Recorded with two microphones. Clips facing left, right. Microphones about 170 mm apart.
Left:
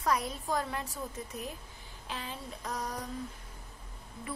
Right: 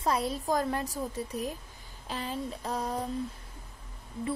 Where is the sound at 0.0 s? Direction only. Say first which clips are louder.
Right 3 dB; 30° right (ahead or behind).